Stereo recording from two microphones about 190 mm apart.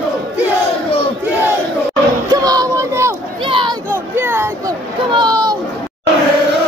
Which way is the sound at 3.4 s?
25° right (ahead or behind).